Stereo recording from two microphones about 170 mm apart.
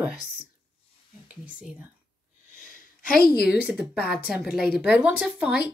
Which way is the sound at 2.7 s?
60° left (ahead or behind).